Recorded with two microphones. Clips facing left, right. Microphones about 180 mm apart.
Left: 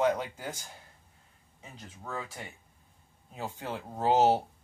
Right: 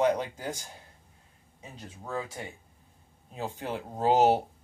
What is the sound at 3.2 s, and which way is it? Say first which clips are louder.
Speech: right 3 dB; 15° right (ahead or behind).